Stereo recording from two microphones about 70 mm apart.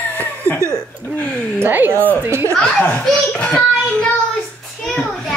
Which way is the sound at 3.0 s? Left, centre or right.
Centre.